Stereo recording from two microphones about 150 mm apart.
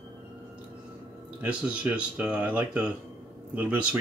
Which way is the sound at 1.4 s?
10° right (ahead or behind).